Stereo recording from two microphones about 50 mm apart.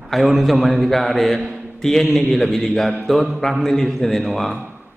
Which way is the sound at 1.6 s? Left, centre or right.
Centre.